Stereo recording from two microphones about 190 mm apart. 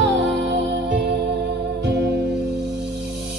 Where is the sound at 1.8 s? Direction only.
65° right (ahead or behind).